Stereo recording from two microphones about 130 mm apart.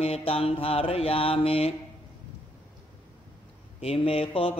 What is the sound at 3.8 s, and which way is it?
Speech, 50° left (ahead or behind).